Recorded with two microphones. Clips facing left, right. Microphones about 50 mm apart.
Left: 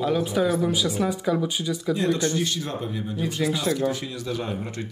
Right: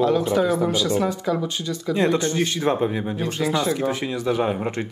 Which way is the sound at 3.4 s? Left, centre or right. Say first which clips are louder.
Right 1 dB; centre.